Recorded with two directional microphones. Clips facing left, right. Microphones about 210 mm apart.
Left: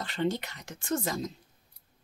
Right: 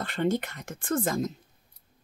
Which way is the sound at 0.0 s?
50° right (ahead or behind).